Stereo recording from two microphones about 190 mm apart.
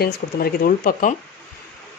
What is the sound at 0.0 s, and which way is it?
Speech, 55° left (ahead or behind).